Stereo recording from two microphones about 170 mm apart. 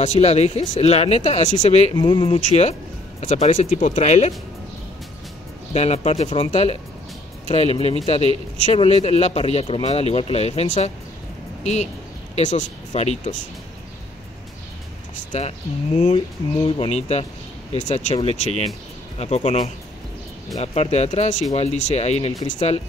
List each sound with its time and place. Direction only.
0.0 s speech: 40° left (ahead or behind)
2.0 s speech: 30° left (ahead or behind)
5.7 s speech: 40° left (ahead or behind)
15.3 s speech: 40° left (ahead or behind)